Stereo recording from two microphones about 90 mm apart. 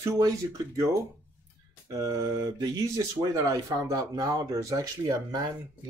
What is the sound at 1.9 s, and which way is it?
Speech, 40° right (ahead or behind).